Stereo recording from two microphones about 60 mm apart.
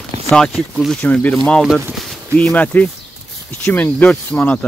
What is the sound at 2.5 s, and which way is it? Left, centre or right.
Speech, left.